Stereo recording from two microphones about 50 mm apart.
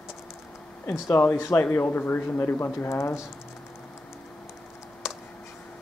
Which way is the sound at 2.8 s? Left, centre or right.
Left.